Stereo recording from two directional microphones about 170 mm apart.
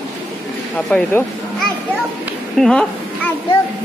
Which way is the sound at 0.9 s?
10° left (ahead or behind).